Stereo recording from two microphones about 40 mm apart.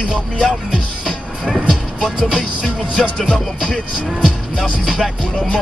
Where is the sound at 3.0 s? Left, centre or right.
Left.